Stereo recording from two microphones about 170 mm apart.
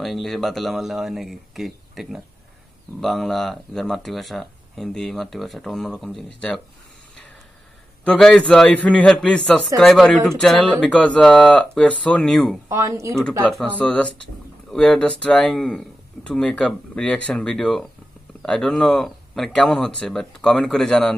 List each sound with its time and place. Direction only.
0.0 s speech: centre (ahead or behind)
8.0 s speech: 5° left (ahead or behind)
12.6 s speech: 20° right (ahead or behind)
13.5 s speech: 5° left (ahead or behind)